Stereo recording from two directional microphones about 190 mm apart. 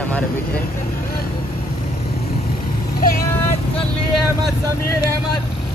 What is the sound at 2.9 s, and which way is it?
Speech, 50° left (ahead or behind).